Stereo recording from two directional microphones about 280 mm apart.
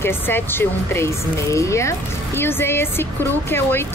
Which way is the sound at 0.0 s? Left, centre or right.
Centre.